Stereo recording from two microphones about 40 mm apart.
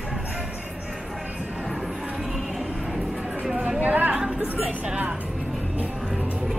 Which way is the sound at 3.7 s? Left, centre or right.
Right.